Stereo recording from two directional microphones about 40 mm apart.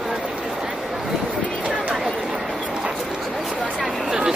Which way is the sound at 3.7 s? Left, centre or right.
Centre.